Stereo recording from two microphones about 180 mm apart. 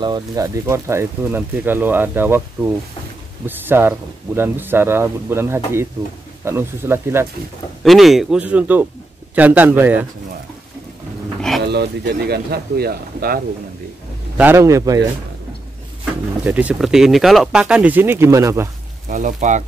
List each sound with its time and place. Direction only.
0.0 s speech: 20° right (ahead or behind)
7.8 s speech: centre (ahead or behind)
11.6 s speech: 65° right (ahead or behind)
14.3 s speech: 10° right (ahead or behind)
16.4 s speech: 5° right (ahead or behind)
19.0 s speech: 45° right (ahead or behind)